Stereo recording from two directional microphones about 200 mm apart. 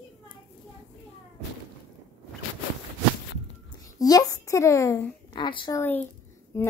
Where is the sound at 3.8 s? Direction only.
20° left (ahead or behind).